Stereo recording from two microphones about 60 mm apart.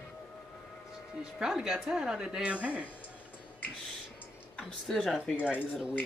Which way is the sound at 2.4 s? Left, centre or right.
Right.